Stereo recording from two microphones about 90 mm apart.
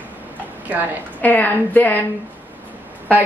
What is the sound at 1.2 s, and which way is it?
Speech, 20° left (ahead or behind).